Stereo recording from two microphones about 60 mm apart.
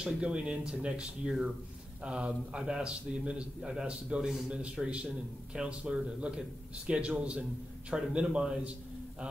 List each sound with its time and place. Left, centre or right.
0.0 s a man's voice: centre